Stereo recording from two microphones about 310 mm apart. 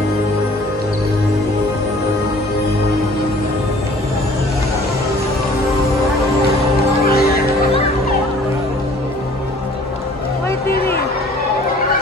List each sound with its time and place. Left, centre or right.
7.1 s music: left